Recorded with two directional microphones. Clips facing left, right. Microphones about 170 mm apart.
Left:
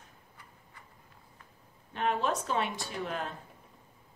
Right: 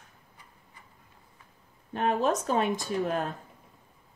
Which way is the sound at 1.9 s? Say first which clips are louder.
Right 4 dB; 40° right (ahead or behind).